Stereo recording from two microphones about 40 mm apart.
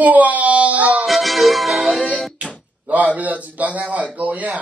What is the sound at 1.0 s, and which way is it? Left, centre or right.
Music, centre.